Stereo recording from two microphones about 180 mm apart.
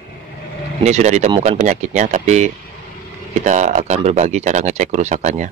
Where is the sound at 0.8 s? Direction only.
40° right (ahead or behind).